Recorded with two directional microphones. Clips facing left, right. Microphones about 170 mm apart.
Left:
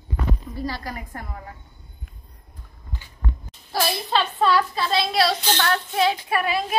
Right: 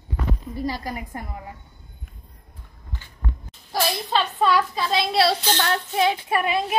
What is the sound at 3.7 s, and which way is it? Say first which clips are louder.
A woman's voice: even; 15° right (ahead or behind).